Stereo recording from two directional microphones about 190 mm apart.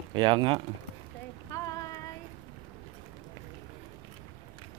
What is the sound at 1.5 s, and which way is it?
Child singing, 20° left (ahead or behind).